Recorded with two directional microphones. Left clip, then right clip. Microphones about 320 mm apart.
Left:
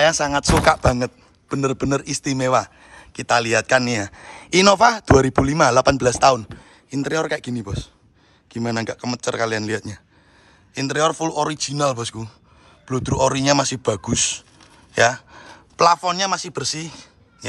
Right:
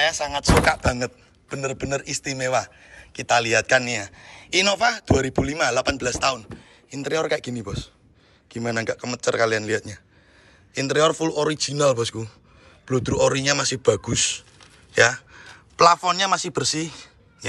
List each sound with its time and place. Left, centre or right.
0.0 s a man's voice: left; by 17.5 s centre